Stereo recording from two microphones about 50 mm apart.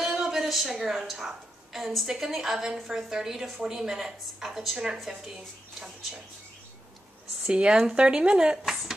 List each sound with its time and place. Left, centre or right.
0.1 s a woman's voice: centre
7.4 s speech: centre